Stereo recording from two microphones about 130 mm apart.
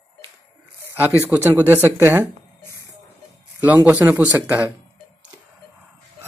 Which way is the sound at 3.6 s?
10° right (ahead or behind).